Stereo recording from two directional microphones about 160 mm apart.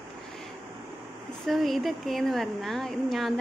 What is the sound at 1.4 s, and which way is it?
A woman's voice, centre (ahead or behind).